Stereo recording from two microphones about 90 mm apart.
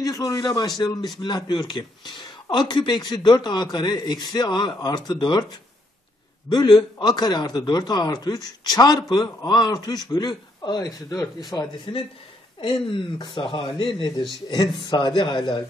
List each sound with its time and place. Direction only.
0.0 s a man's voice: 40° left (ahead or behind); by 5.4 s 60° left (ahead or behind)
6.5 s a man's voice: 60° left (ahead or behind); by 11.7 s 45° left (ahead or behind)
12.5 s speech: 65° left (ahead or behind)
14.9 s a man's voice: 60° left (ahead or behind)